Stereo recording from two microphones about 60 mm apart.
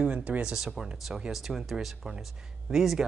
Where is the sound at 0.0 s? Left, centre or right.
Right.